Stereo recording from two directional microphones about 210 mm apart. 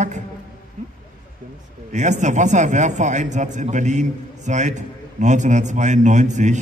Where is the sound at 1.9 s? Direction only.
35° right (ahead or behind).